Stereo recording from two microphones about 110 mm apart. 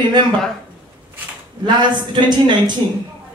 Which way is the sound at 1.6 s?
45° right (ahead or behind).